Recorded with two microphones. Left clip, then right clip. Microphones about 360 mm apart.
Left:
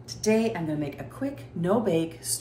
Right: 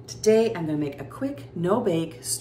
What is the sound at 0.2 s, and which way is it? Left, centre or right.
Speech, centre.